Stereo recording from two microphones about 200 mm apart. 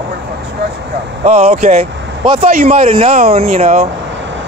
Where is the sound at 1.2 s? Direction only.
30° right (ahead or behind).